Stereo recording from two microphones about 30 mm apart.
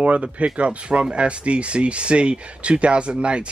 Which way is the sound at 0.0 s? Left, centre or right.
Right.